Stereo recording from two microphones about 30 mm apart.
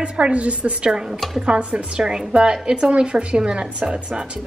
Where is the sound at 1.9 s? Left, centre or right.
Right.